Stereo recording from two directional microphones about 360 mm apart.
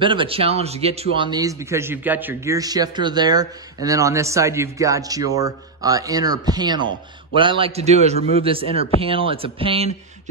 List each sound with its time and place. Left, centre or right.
0.0 s a man's voice: centre